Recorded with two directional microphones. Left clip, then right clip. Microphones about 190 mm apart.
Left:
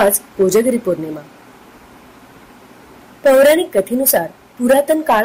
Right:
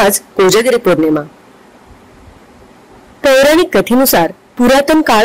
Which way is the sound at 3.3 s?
55° right (ahead or behind).